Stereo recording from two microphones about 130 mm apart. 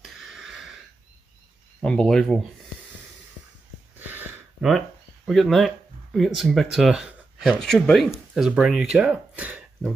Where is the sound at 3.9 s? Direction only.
15° right (ahead or behind).